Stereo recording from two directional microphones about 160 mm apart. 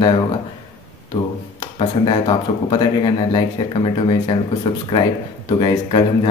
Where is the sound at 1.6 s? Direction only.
30° left (ahead or behind).